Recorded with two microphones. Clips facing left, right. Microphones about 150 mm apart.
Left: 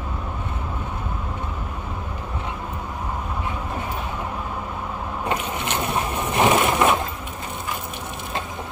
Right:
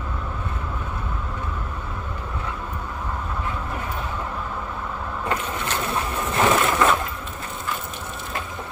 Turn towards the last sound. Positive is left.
turn(degrees=20)  # may be behind; listen again after turning